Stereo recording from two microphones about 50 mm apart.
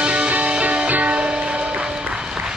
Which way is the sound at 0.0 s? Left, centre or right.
Right.